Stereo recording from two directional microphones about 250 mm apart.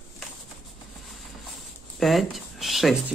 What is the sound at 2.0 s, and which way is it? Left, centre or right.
Speech, centre.